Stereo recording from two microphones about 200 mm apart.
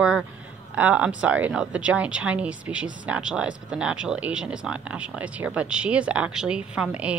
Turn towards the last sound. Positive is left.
turn(degrees=-5)  # may be behind; listen again after turning